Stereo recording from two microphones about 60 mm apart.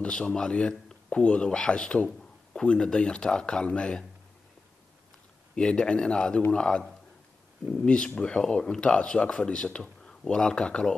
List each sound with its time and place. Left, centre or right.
0.0 s speech: centre
2.0 s a sound: centre
2.6 s speech: centre
5.6 s speech: centre
7.8 s speech: centre